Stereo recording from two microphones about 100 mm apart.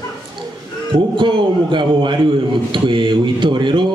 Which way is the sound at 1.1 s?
50° right (ahead or behind).